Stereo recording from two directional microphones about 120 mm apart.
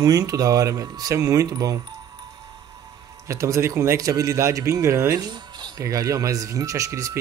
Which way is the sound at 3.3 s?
25° right (ahead or behind).